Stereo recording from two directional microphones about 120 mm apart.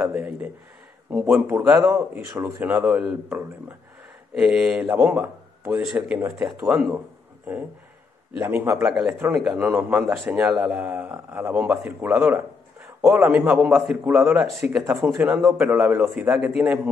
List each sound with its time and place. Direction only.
0.0 s a sound: 10° right (ahead or behind)
1.2 s speech: 15° right (ahead or behind)
5.8 s speech: 5° right (ahead or behind)
8.4 s speech: 15° right (ahead or behind)
15.5 s speech: 15° right (ahead or behind)